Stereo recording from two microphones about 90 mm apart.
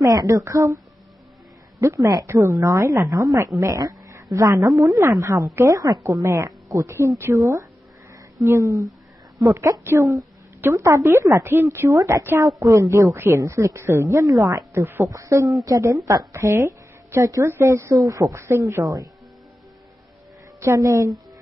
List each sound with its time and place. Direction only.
0.0 s speech: 45° right (ahead or behind)
1.8 s a woman's voice: 35° right (ahead or behind)
15.0 s speech: 40° right (ahead or behind)
20.6 s speech: 40° right (ahead or behind)